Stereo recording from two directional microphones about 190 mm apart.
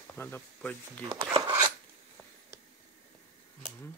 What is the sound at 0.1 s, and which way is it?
Speech, 10° left (ahead or behind).